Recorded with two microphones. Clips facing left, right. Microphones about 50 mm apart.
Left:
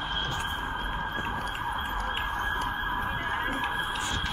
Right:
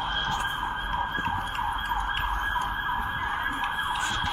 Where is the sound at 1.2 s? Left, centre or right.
Centre.